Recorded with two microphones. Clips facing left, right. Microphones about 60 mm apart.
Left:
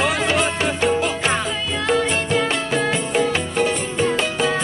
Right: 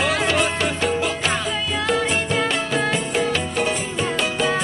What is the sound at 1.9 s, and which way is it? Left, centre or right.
Music, centre.